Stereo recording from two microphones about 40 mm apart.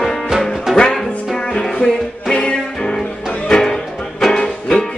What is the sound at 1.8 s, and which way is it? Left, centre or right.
Music, left.